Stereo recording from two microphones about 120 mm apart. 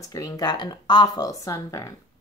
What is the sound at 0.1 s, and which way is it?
A woman's voice, 30° left (ahead or behind).